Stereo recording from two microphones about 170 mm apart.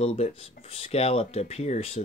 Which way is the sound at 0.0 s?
35° left (ahead or behind).